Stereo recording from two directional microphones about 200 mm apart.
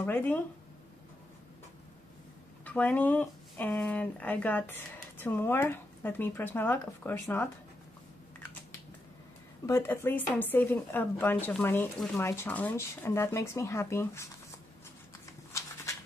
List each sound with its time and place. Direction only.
0.0 s speech: 10° left (ahead or behind)
2.6 s speech: 10° left (ahead or behind)
9.7 s speech: 10° left (ahead or behind)
15.5 s a sound: 15° left (ahead or behind)